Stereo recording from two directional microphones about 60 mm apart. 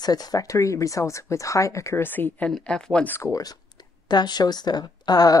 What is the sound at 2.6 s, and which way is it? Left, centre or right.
Speech, centre.